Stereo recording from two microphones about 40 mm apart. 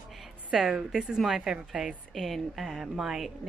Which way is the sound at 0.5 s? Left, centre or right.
Centre.